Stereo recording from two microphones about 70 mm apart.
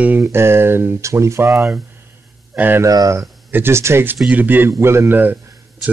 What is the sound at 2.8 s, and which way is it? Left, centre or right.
Speech, right.